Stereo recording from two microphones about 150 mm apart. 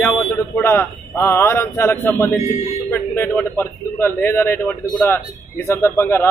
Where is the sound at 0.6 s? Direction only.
15° left (ahead or behind).